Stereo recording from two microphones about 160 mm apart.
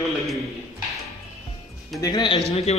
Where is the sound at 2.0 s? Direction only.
25° left (ahead or behind).